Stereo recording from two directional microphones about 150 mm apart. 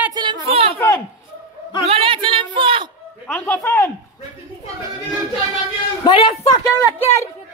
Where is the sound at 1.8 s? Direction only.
40° right (ahead or behind).